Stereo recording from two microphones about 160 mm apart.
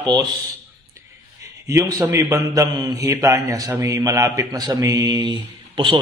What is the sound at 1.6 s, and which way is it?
A man's voice, 20° right (ahead or behind).